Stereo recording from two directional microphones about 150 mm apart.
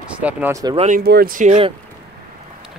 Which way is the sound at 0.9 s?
90° right.